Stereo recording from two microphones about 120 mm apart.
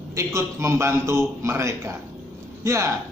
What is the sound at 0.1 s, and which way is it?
A man's voice, 25° right (ahead or behind).